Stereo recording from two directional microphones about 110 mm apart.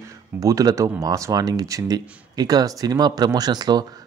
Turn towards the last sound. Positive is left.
turn(degrees=-40)  # may be behind; listen again after turning